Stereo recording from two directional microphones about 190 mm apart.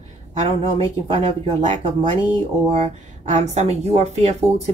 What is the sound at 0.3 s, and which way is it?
Speech, 35° right (ahead or behind).